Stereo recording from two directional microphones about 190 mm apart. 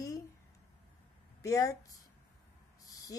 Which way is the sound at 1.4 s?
20° left (ahead or behind).